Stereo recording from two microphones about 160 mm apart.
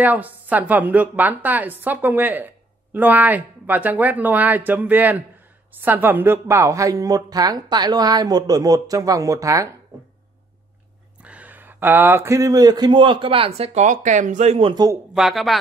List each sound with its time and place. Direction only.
0.0 s a woman's voice: 10° right (ahead or behind)
11.2 s a woman's voice: 10° right (ahead or behind); by 14.7 s 45° right (ahead or behind)
14.7 s a woman's voice: 25° right (ahead or behind)
15.1 s speech: centre (ahead or behind)